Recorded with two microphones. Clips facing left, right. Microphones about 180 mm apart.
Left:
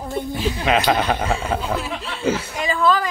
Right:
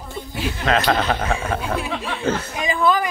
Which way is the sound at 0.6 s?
15° left (ahead or behind).